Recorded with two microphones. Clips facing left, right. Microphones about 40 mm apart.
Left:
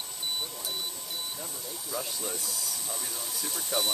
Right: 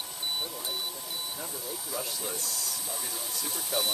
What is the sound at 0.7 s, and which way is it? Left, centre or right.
Speech, centre.